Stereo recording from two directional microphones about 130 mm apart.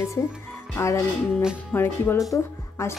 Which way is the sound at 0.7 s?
20° left (ahead or behind).